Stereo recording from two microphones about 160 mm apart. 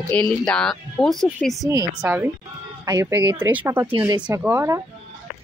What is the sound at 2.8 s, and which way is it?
Speech, 20° right (ahead or behind).